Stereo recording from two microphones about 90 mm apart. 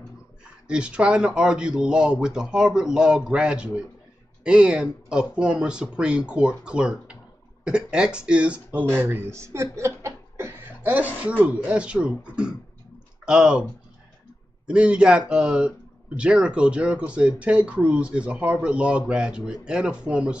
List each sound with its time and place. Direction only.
0.7 s speech: 10° right (ahead or behind)
14.7 s speech: 10° right (ahead or behind)